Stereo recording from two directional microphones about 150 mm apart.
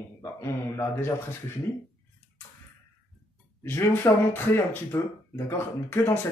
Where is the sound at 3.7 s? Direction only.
15° left (ahead or behind).